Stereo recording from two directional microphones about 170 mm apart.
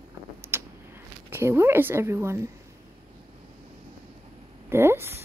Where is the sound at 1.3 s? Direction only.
15° right (ahead or behind).